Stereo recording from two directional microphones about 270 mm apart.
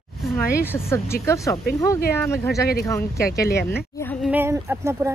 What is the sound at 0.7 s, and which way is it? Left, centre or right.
Speech, centre.